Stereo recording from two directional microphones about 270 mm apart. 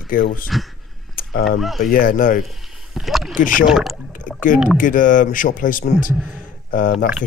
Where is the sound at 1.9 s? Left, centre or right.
Left.